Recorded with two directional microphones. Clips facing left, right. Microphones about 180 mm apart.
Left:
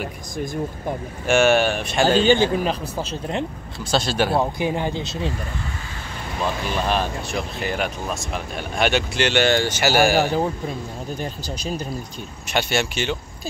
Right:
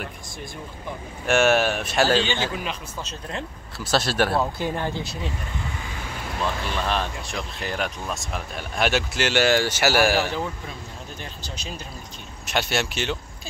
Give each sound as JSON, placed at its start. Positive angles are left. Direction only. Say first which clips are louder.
{"t": 1.2, "sound": "speech", "louder": "left 2 dB", "side_deg": 0}
{"t": 2.2, "sound": "speech", "louder": "left 10 dB", "side_deg": 40}
{"t": 3.8, "sound": "speech", "louder": "left 1 dB", "side_deg": 0}
{"t": 4.4, "sound": "speech", "louder": "left 3 dB", "side_deg": 15}
{"t": 6.7, "sound": "speech", "louder": "left 4 dB", "side_deg": 5}
{"t": 11.1, "sound": "speech", "louder": "left 8 dB", "side_deg": 35}
{"t": 12.4, "sound": "speech", "louder": "left 3 dB", "side_deg": 0}